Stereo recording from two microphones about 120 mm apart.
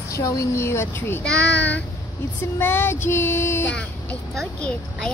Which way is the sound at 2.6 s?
20° left (ahead or behind).